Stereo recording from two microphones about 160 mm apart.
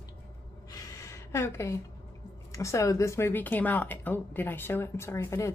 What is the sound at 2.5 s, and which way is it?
Speech, 20° left (ahead or behind).